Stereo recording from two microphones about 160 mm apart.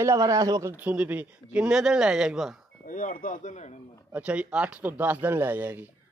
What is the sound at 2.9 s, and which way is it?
Speech, 60° left (ahead or behind).